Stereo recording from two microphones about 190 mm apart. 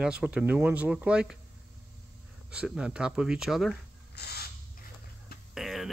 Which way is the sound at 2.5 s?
5° right (ahead or behind).